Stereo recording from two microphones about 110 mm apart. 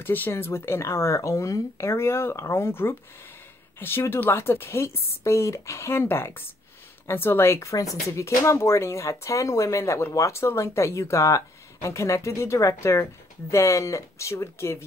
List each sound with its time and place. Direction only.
0.0 s speech: 20° left (ahead or behind)